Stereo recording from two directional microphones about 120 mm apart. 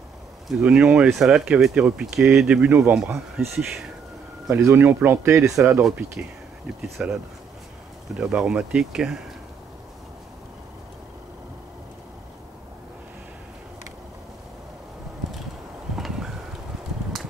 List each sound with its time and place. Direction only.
0.5 s speech: 5° right (ahead or behind)
4.6 s speech: 20° right (ahead or behind)
7.0 s speech: 10° right (ahead or behind)
8.2 s speech: 5° right (ahead or behind)